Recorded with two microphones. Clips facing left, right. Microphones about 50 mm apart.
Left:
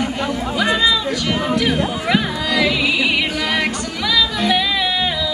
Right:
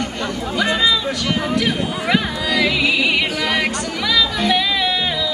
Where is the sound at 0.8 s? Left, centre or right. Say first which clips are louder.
Left 1 dB; centre.